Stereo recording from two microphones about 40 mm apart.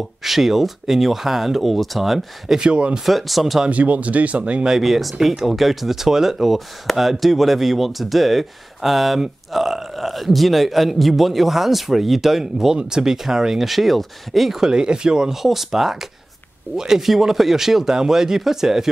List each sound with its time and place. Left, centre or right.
0.2 s speech: centre
2.5 s speech: right
3.1 s speech: centre
3.7 s speech: right
4.6 s speech: centre
14.6 s speech: centre
15.4 s speech: centre